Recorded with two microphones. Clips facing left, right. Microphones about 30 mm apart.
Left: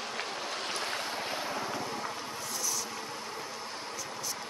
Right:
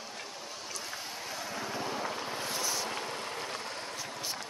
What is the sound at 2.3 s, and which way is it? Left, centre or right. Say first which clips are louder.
Boat: right 2 dB; right.